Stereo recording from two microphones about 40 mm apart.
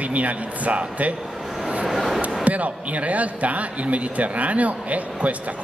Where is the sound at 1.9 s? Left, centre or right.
Centre.